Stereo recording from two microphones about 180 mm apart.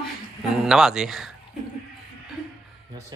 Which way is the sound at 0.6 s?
5° right (ahead or behind).